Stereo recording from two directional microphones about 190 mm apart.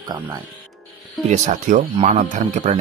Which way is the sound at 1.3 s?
40° right (ahead or behind).